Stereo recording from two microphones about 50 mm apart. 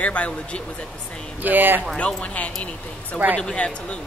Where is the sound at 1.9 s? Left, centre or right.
Left.